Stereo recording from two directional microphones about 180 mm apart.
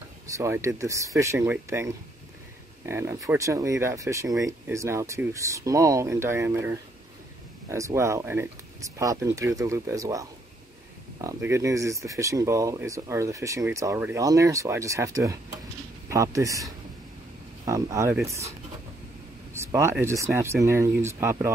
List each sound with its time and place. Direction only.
0.3 s speech: 15° right (ahead or behind)
19.5 s speech: 15° right (ahead or behind)